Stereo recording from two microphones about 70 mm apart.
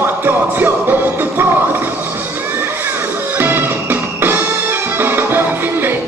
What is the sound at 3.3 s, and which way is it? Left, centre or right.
Music, right.